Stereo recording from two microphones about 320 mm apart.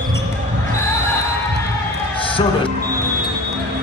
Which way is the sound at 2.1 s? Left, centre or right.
Centre.